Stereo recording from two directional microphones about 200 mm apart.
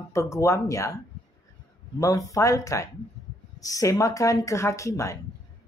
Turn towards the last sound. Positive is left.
turn(degrees=15)  # may be behind; listen again after turning